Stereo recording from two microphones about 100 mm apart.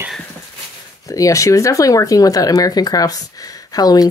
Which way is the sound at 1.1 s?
35° left (ahead or behind).